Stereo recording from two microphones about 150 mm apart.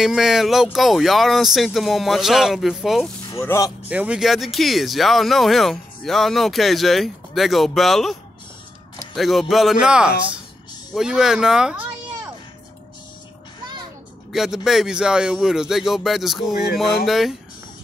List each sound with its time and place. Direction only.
0.0 s speech: centre (ahead or behind)
3.3 s speech: 20° left (ahead or behind)
3.9 s speech: 10° right (ahead or behind)
14.3 s speech: 5° right (ahead or behind)